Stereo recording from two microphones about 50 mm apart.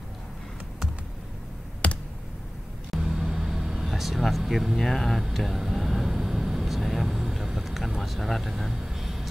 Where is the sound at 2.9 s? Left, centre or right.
Centre.